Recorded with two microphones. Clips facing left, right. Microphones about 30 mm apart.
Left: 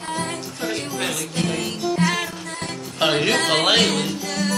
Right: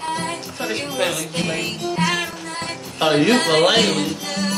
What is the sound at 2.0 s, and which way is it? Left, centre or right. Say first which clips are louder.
Speech: right 2 dB; centre.